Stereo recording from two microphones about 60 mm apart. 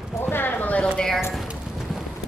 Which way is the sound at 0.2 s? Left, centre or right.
Left.